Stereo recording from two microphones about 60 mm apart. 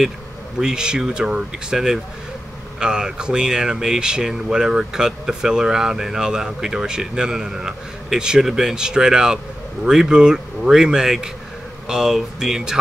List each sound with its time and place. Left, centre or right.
0.6 s speech: centre